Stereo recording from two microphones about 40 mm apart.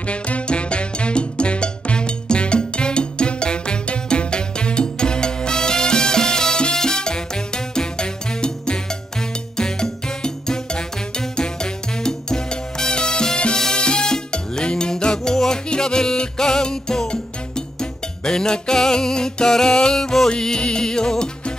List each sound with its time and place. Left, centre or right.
0.0 s music: left